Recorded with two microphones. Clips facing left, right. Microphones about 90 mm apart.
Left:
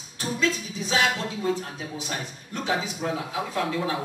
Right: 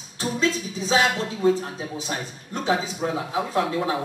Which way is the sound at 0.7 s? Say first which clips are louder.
Right 6 dB; 30° right (ahead or behind).